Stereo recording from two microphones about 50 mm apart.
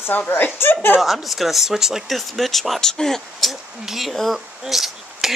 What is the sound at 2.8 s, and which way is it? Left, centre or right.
Speech, centre.